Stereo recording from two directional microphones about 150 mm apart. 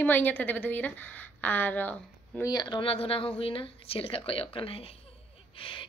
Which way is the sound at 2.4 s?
25° left (ahead or behind).